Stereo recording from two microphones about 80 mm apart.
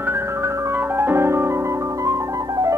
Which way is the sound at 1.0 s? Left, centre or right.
Right.